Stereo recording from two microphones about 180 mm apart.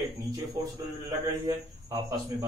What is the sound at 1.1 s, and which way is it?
Speech, 20° right (ahead or behind).